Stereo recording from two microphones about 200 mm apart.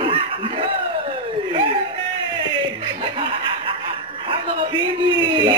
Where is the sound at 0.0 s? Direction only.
25° right (ahead or behind).